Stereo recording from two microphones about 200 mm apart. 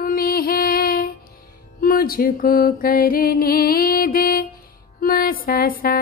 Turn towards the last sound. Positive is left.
turn(degrees=45)  # may be behind; listen again after turning